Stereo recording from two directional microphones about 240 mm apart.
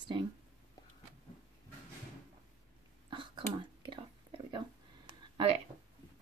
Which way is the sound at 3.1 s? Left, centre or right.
Centre.